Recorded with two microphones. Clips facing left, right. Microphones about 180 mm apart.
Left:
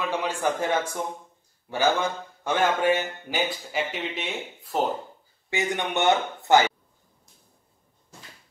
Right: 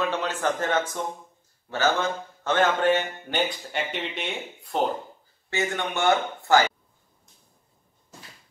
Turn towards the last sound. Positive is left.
turn(degrees=20)  # may be behind; listen again after turning